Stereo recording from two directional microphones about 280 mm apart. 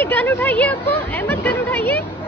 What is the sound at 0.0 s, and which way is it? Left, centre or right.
Speech, centre.